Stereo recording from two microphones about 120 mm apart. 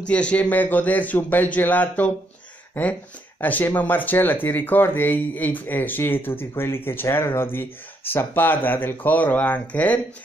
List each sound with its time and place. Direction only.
0.1 s speech: 10° left (ahead or behind)